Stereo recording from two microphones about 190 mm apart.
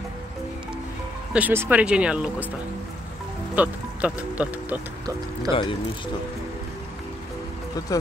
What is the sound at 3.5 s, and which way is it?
Speech, 10° right (ahead or behind).